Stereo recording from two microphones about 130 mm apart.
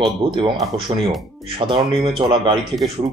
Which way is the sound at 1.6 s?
40° right (ahead or behind).